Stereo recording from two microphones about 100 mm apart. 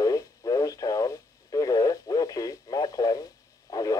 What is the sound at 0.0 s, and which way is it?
Radio, 40° left (ahead or behind).